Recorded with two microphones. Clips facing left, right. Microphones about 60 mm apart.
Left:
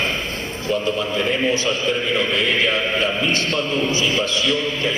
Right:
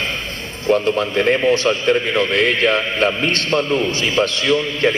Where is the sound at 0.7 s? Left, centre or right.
Right.